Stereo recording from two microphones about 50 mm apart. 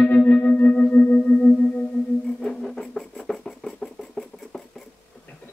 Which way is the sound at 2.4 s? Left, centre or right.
Centre.